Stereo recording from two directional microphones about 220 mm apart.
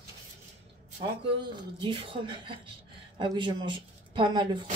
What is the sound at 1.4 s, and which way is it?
A woman's voice, 20° right (ahead or behind).